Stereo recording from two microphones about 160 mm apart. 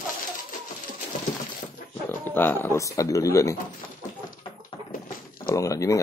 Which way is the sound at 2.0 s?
15° left (ahead or behind).